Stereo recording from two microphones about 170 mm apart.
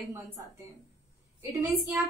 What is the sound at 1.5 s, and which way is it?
Speech, 15° right (ahead or behind).